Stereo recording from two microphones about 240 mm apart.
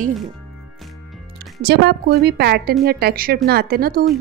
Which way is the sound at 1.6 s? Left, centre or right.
Right.